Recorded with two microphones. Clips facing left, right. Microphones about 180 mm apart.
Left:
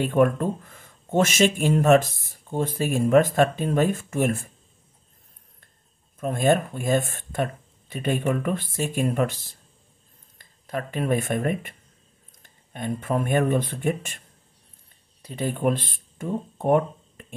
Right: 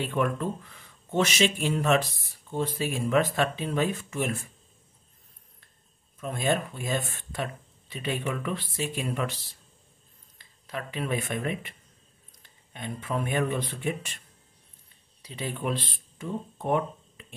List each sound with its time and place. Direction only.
0.0 s speech: 50° left (ahead or behind)
6.1 s speech: 50° left (ahead or behind)
15.2 s speech: 50° left (ahead or behind)